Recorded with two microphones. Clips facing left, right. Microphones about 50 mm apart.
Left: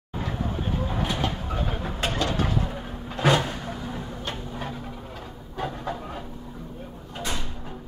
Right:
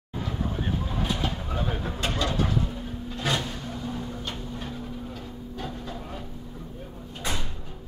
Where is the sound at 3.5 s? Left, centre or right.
Left.